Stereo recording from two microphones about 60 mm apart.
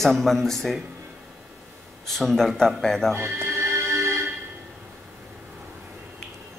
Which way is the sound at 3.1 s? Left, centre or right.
Right.